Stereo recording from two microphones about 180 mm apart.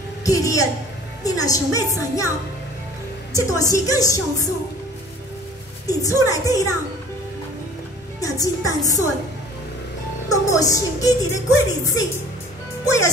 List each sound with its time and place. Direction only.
0.2 s a woman's voice: 20° left (ahead or behind)
3.3 s speech: 20° left (ahead or behind)
6.2 s speech: 20° left (ahead or behind)
8.2 s speech: 20° left (ahead or behind)
10.3 s speech: 20° left (ahead or behind)